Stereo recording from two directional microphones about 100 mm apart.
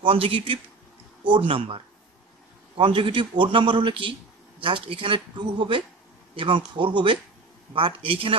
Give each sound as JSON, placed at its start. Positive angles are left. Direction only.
{"t": 0.0, "sound": "a man's voice", "side_deg": -70}